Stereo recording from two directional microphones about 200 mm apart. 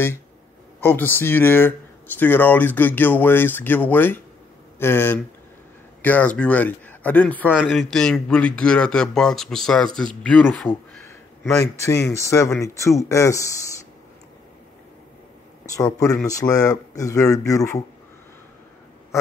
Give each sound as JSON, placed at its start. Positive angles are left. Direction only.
{"t": 0.7, "sound": "a man's voice", "side_deg": 10}
{"t": 15.6, "sound": "speech", "side_deg": 15}